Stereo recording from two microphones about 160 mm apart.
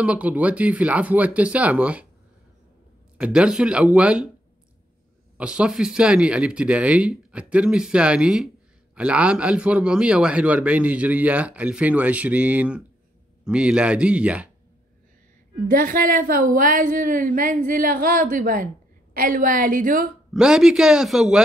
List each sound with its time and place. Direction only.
0.0 s a man's voice: 10° right (ahead or behind)
3.2 s a man's voice: 5° right (ahead or behind)
5.4 s a man's voice: 5° right (ahead or behind)
15.7 s a woman's voice: 60° right (ahead or behind)
20.3 s a man's voice: 5° right (ahead or behind)